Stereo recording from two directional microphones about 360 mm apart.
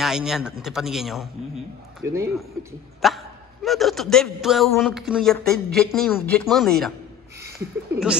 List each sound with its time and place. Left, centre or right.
0.0 s a man's voice: centre